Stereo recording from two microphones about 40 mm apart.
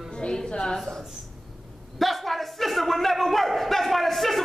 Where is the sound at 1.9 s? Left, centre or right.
Centre.